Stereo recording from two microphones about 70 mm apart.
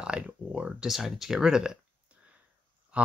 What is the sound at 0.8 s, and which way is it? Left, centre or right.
Speech, centre.